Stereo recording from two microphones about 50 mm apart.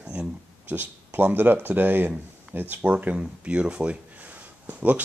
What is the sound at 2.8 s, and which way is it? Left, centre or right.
Speech, right.